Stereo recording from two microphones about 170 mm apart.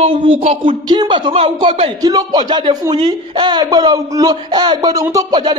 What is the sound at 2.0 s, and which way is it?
Speech, 20° right (ahead or behind).